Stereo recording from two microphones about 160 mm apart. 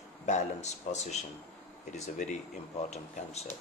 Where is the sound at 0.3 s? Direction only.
45° left (ahead or behind).